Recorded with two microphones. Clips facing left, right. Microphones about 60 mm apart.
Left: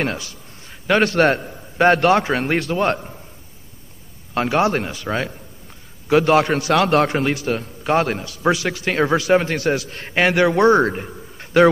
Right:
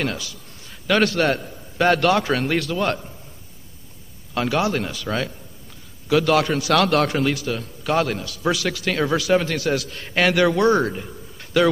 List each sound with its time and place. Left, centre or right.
0.0 s a man's voice: left
4.3 s a man's voice: left
10.1 s a man's voice: left
11.1 s a sound: left